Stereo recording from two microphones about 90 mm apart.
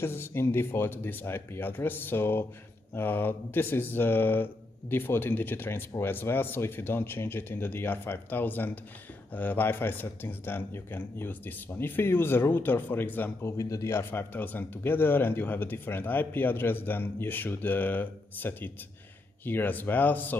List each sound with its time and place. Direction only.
0.0 s speech: 25° left (ahead or behind)
13.5 s speech: 35° left (ahead or behind); by 20.3 s 20° left (ahead or behind)